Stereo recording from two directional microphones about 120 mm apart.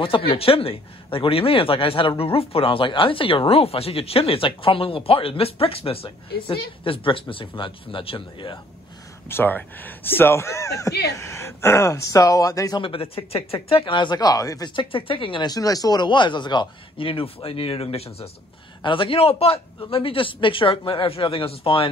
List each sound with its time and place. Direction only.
0.0 s speech: 50° left (ahead or behind)
9.3 s speech: 15° left (ahead or behind)
12.8 s speech: 50° left (ahead or behind); by 14.7 s 30° left (ahead or behind)
14.8 s speech: 45° left (ahead or behind)
18.8 s speech: 45° left (ahead or behind)